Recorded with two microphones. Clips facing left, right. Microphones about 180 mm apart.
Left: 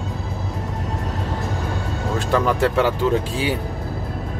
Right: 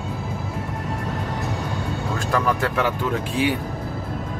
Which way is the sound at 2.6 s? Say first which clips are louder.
Left 4 dB; 30° left (ahead or behind).